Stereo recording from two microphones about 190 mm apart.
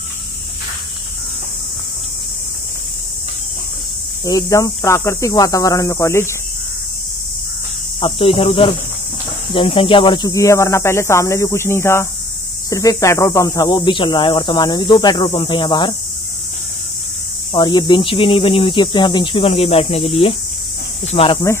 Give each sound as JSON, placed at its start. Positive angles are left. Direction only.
{"t": 4.2, "sound": "speech", "side_deg": 20}
{"t": 8.0, "sound": "speech", "side_deg": 30}
{"t": 17.5, "sound": "speech", "side_deg": 20}